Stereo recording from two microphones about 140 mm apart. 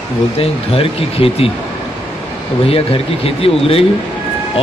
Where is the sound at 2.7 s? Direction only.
40° left (ahead or behind).